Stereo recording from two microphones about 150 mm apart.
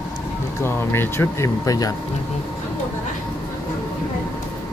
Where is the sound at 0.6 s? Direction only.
15° left (ahead or behind).